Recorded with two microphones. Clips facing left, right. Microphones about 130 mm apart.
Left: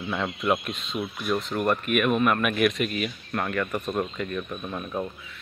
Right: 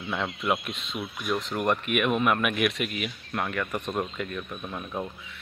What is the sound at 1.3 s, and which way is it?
Speech, 10° right (ahead or behind).